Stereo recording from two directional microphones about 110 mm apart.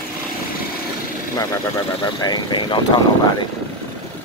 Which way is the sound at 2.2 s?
40° left (ahead or behind).